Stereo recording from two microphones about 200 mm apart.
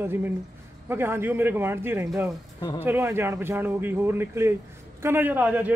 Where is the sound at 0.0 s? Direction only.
10° right (ahead or behind).